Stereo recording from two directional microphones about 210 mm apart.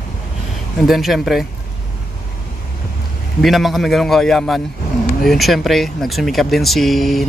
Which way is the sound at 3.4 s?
Centre (ahead or behind).